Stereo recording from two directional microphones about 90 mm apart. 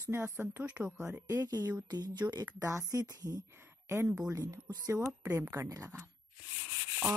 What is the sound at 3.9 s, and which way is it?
Speech, 25° right (ahead or behind).